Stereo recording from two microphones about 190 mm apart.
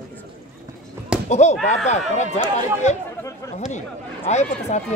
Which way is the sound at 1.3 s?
35° left (ahead or behind).